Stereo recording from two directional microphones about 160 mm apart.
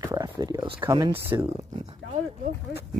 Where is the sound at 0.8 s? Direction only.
20° right (ahead or behind).